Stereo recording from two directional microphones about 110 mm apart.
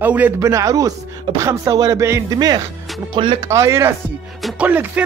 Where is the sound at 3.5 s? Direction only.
25° right (ahead or behind).